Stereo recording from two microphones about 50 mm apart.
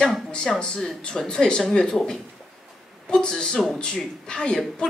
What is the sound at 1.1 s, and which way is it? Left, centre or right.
Speech, centre.